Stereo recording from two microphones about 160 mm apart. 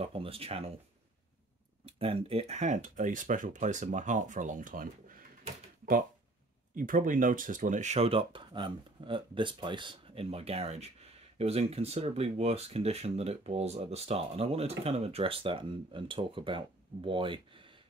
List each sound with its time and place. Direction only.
0.0 s speech: 35° right (ahead or behind)
1.9 s speech: 35° right (ahead or behind); by 5.2 s 60° right (ahead or behind)
6.7 s speech: 55° right (ahead or behind); by 17.4 s 35° right (ahead or behind)